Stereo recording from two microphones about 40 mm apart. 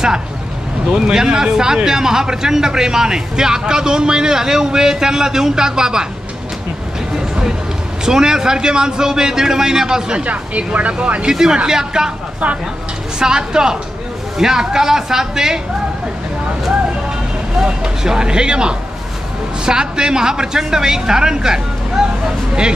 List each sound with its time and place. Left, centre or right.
0.8 s speech: right
8.0 s speech: centre
10.1 s speech: right
11.2 s speech: centre
13.2 s speech: centre
17.6 s speech: centre